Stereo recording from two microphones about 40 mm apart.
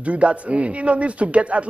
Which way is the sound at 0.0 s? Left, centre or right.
Right.